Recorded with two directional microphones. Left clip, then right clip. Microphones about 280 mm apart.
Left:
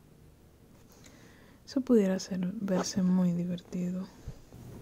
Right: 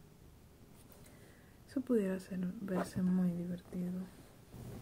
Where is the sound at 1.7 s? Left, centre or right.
Left.